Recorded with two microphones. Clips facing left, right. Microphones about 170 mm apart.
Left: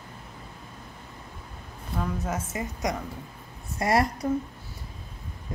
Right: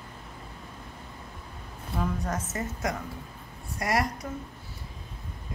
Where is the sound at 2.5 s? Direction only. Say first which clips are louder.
Left 1 dB; 15° left (ahead or behind).